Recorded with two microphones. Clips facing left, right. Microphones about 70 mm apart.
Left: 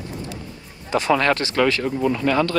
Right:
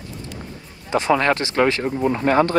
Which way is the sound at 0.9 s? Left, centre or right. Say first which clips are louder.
Right 1 dB; right.